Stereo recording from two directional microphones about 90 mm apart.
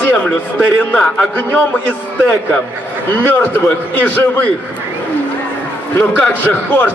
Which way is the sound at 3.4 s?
20° left (ahead or behind).